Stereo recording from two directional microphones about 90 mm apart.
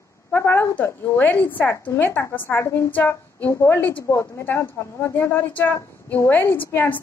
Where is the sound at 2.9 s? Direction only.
20° left (ahead or behind).